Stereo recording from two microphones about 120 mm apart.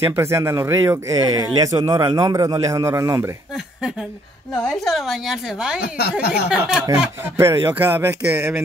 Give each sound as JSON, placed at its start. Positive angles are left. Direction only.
{"t": 0.0, "sound": "speech", "side_deg": -20}
{"t": 4.8, "sound": "a woman's voice", "side_deg": 0}
{"t": 7.3, "sound": "speech", "side_deg": -20}